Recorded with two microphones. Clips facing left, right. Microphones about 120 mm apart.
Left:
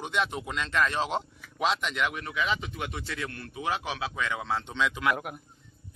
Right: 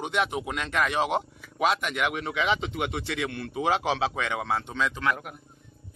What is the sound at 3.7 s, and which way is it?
Speech, 90° right.